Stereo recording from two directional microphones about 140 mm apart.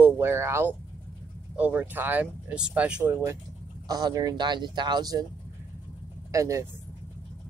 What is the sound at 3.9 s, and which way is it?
Speech, 25° right (ahead or behind).